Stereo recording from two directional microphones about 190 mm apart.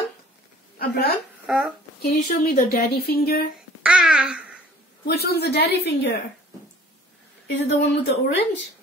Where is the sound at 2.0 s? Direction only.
55° left (ahead or behind).